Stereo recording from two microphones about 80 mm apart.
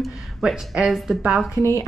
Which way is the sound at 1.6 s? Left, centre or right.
Left.